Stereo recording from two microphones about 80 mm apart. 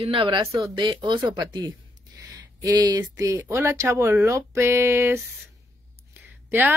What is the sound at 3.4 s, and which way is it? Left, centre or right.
Speech, right.